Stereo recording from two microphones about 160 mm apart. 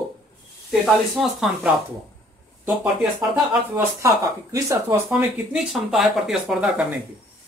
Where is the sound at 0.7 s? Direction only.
Centre (ahead or behind); by 4.9 s 20° right (ahead or behind).